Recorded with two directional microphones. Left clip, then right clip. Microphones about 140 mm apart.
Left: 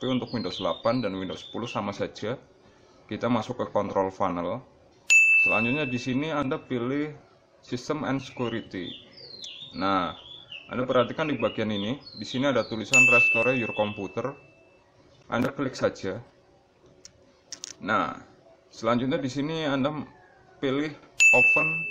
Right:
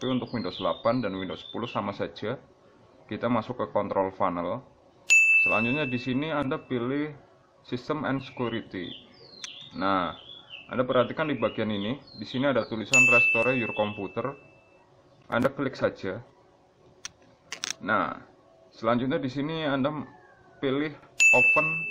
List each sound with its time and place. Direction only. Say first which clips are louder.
0.0 s speech: left 1 dB; 20° left (ahead or behind)
5.0 s speech: left 1 dB; centre (ahead or behind)
12.9 s speech: left 1 dB; centre (ahead or behind)
13.5 s speech: left 1 dB; 10° left (ahead or behind)
15.5 s speech: left 1 dB; 15° left (ahead or behind)
17.8 s speech: left 1 dB; 15° left (ahead or behind)
21.2 s ding: left 1 dB; centre (ahead or behind)